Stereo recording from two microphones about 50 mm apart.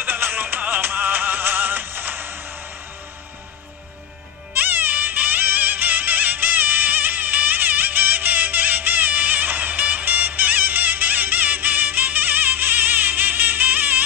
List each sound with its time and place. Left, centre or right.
0.0 s music: right
4.6 s music: right